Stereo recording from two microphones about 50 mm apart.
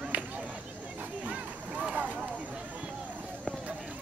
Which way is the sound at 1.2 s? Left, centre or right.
Right.